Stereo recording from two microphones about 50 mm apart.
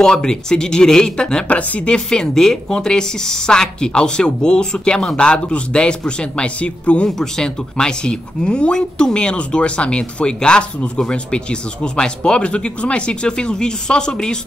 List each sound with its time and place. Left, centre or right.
0.0 s a woman's voice: centre
1.5 s speech: left
2.0 s a woman's voice: centre
7.1 s a woman's voice: centre